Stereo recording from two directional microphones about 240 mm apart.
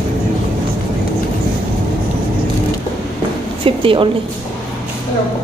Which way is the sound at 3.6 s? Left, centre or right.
Right.